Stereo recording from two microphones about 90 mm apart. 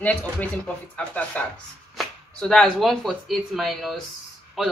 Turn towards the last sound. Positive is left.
turn(degrees=0)  # may be behind; listen again after turning